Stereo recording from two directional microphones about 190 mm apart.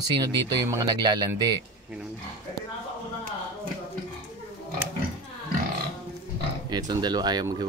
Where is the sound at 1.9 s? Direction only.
5° right (ahead or behind).